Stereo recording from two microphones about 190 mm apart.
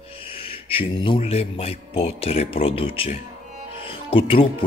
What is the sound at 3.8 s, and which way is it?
Music, 30° left (ahead or behind).